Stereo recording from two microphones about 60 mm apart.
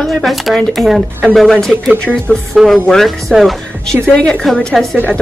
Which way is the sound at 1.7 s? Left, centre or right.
Right.